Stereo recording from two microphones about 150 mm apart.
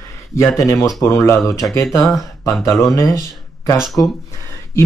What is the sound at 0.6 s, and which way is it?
Speech, 20° left (ahead or behind).